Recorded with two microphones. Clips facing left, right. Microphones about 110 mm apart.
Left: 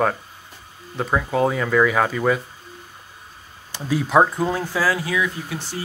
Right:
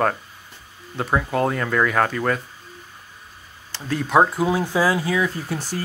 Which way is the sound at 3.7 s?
5° left (ahead or behind).